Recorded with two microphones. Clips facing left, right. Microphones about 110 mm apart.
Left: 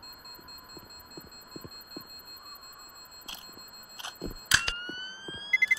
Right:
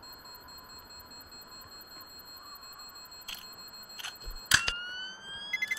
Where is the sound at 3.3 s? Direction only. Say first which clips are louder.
Left 4 dB; 25° left (ahead or behind).